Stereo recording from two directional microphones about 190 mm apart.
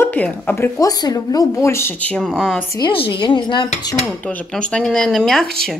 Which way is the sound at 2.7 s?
25° left (ahead or behind).